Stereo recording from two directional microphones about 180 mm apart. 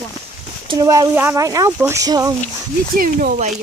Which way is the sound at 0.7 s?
20° right (ahead or behind).